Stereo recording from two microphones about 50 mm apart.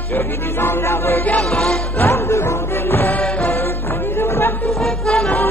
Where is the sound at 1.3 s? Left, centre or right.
Left.